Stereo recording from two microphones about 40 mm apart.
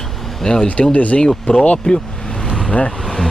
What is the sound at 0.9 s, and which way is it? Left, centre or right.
Speech, left.